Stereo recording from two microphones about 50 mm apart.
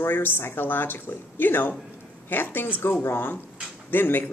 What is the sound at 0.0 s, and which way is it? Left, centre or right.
Speech, left.